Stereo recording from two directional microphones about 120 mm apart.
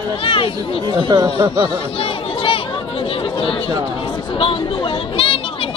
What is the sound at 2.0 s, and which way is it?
Chatter, 50° left (ahead or behind).